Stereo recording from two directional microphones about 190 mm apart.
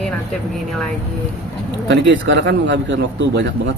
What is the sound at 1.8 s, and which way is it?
A man's voice, 70° right (ahead or behind).